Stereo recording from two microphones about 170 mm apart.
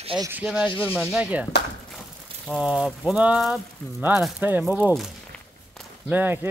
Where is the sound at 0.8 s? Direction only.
10° left (ahead or behind).